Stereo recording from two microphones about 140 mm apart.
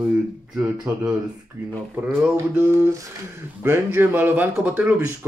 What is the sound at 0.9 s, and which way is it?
Speech, 15° right (ahead or behind).